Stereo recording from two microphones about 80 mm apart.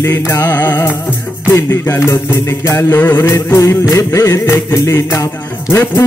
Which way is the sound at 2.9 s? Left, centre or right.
Left.